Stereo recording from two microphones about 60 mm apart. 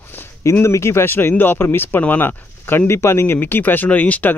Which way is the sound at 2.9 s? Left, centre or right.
Left.